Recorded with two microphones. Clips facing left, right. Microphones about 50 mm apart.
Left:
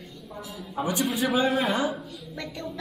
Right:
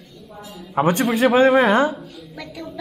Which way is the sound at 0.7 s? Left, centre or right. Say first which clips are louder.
Right 10 dB; right.